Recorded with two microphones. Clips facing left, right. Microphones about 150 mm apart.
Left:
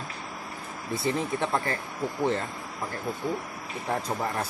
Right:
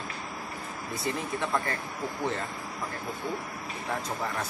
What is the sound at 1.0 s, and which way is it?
Speech, 30° left (ahead or behind).